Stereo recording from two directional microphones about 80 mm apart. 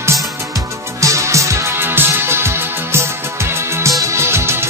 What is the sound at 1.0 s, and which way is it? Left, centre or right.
Music, right.